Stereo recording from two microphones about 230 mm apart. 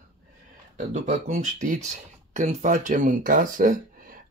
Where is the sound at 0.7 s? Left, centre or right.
Right.